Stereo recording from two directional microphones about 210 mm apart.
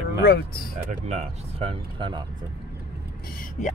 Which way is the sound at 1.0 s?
30° right (ahead or behind).